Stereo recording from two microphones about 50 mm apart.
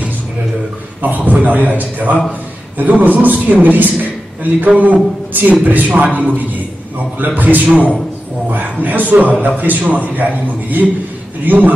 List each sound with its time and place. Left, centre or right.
1.0 s a man's voice: right
8.8 s a man's voice: right